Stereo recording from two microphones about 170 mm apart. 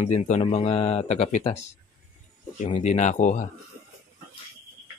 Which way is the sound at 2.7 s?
40° left (ahead or behind).